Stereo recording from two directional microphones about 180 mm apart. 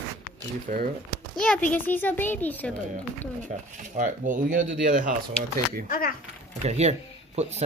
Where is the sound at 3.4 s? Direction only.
45° right (ahead or behind).